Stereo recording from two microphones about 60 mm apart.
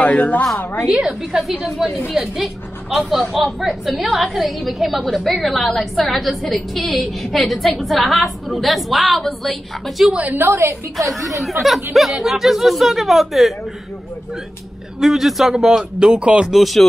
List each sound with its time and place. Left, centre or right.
0.0 s a woman's voice: left
0.8 s speech: centre
1.9 s a woman's voice: left
2.1 s a woman's voice: centre
10.1 s a woman's voice: right
10.4 s a woman's voice: right
11.2 s a woman's voice: centre
15.0 s speech: centre
16.4 s a woman's voice: centre